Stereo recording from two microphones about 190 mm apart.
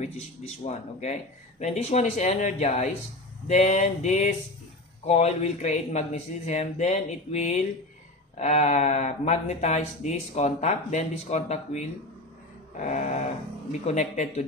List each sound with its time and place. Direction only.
1.6 s speech: 35° left (ahead or behind)